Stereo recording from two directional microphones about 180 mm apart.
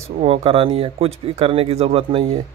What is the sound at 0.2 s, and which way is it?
Speech, 35° right (ahead or behind).